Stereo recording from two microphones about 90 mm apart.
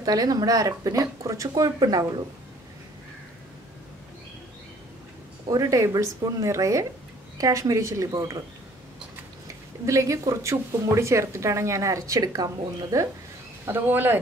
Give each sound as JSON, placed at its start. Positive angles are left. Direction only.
{"t": 0.0, "sound": "speech", "side_deg": -45}
{"t": 5.5, "sound": "speech", "side_deg": -40}
{"t": 9.8, "sound": "speech", "side_deg": -35}
{"t": 13.7, "sound": "speech", "side_deg": -25}